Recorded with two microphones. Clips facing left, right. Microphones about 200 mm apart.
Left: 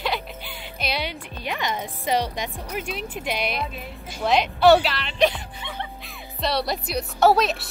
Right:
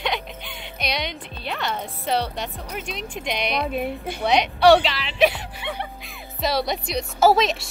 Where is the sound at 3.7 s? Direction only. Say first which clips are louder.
Right 11 dB; 60° right (ahead or behind).